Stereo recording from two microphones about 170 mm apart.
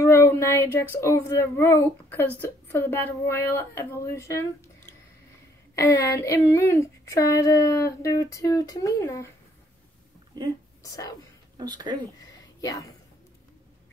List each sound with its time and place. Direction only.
0.0 s a sound: 15° left (ahead or behind)
1.0 s speech: 15° left (ahead or behind)
5.8 s child singing: 15° left (ahead or behind)
10.3 s a woman's voice: 25° right (ahead or behind)
10.8 s speech: 20° left (ahead or behind)
11.5 s speech: 25° right (ahead or behind)
12.5 s a sound: 20° left (ahead or behind)